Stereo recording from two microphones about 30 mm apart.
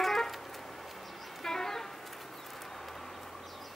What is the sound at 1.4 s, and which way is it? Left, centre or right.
Vehicle, centre.